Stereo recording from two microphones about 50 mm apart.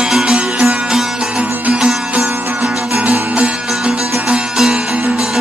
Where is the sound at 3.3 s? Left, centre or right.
Right.